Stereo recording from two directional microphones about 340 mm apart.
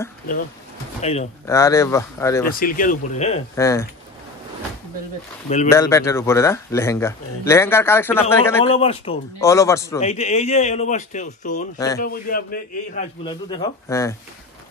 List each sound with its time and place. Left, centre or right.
1.0 s speech: centre
2.4 s a man's voice: left; by 3.8 s centre
5.7 s speech: centre
8.7 s a man's voice: centre
13.2 s speech: centre